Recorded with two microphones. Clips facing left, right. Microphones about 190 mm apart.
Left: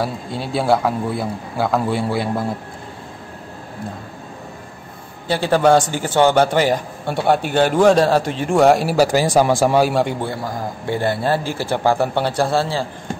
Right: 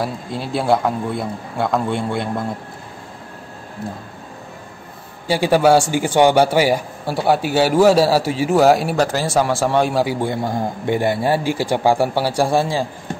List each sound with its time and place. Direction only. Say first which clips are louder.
0.0 s a man's voice: even; centre (ahead or behind)
5.3 s a man's voice: right 1 dB; 10° right (ahead or behind)
10.2 s a man's voice: right 4 dB; 25° right (ahead or behind)